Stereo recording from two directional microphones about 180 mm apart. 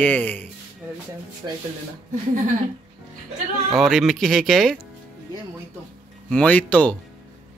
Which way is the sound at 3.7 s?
Centre (ahead or behind).